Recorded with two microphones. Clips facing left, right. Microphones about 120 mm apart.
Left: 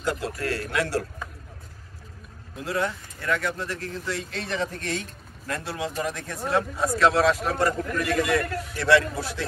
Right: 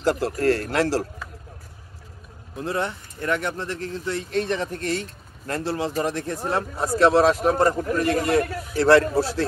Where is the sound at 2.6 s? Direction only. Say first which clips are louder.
Right 1 dB; 25° right (ahead or behind).